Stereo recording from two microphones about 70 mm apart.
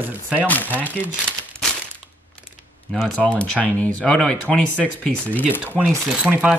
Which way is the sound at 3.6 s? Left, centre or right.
Centre.